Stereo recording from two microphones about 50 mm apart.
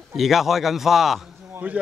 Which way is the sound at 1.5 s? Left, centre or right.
Right.